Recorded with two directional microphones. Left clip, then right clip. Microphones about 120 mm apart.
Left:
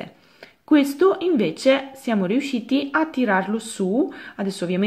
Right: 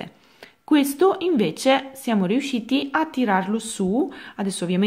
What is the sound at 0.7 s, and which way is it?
A woman's voice, 30° right (ahead or behind).